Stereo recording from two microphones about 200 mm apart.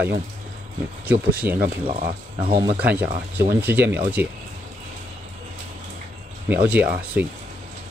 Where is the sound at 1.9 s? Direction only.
30° right (ahead or behind).